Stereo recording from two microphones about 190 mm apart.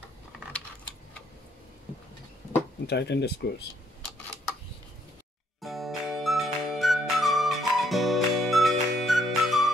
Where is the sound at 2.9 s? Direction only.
60° left (ahead or behind).